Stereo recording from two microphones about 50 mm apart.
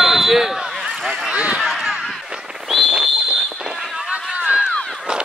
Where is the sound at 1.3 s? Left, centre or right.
Right.